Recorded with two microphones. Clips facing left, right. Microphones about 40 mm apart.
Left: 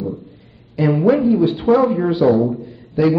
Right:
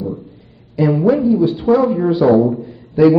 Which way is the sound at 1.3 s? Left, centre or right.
Left.